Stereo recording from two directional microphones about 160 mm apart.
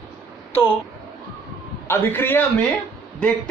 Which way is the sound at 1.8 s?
15° left (ahead or behind).